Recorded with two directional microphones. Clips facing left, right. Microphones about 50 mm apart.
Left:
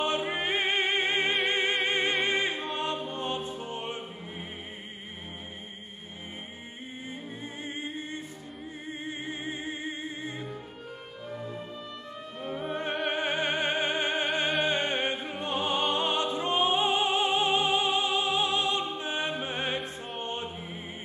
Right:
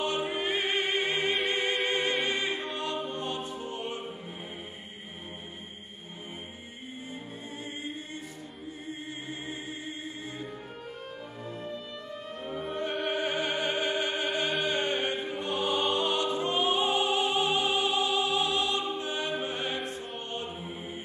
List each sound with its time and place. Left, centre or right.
0.0 s music: left
1.5 s opera: left
2.2 s music: left
2.8 s mantra: left
12.6 s opera: left
19.8 s music: centre